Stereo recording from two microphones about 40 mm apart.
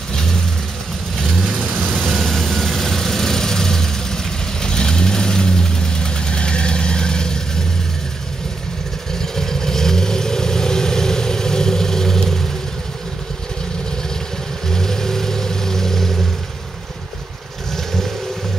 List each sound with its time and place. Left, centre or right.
0.1 s vehicle: centre
9.2 s vehicle: centre
14.7 s vehicle: centre